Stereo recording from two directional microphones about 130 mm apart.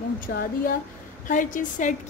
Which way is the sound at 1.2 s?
90° left.